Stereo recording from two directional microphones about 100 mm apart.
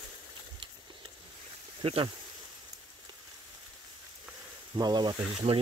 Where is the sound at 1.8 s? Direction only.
70° right (ahead or behind).